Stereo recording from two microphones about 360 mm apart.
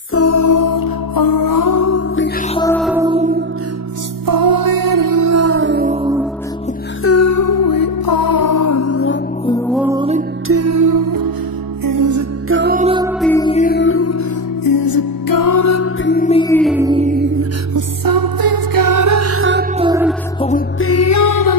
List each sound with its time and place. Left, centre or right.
0.1 s music: left
2.5 s music: centre
4.3 s music: right
7.0 s music: left
9.7 s music: centre
10.5 s music: right
12.4 s music: right
13.2 s music: centre; by 14.2 s left
14.6 s music: left
16.0 s music: left; by 17.5 s right
17.7 s music: right
19.8 s music: centre
20.8 s music: left